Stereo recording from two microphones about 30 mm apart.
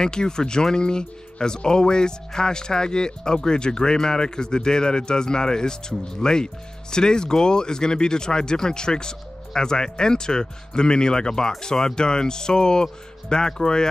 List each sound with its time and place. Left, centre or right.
0.0 s speech: left